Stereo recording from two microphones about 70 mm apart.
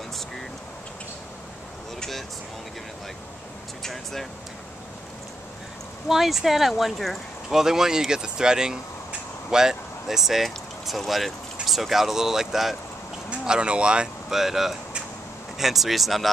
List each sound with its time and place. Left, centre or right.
2.0 s a sound: centre
3.8 s speech: centre
6.0 s speech: centre
13.3 s speech: centre